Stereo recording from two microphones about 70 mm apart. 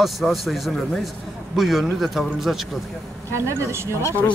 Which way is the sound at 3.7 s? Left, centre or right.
Right.